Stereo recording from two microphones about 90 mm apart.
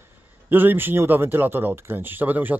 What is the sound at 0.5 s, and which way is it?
Speech, 25° right (ahead or behind).